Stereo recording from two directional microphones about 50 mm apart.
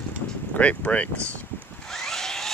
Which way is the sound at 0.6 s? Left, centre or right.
Left.